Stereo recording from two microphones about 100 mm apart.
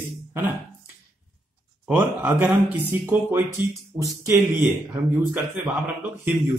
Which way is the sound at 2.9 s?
20° right (ahead or behind).